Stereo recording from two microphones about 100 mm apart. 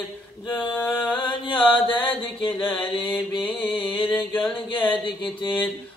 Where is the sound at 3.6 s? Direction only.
55° left (ahead or behind).